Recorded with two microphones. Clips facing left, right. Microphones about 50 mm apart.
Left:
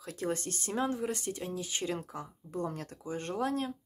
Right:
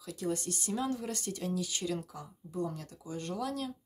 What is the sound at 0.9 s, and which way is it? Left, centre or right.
Speech, left.